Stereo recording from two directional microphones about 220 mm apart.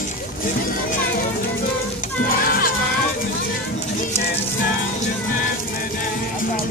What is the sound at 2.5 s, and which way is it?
Music, 40° left (ahead or behind).